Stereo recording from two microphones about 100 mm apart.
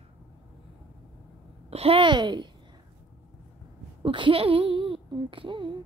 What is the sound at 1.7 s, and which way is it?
Speech, 90° right.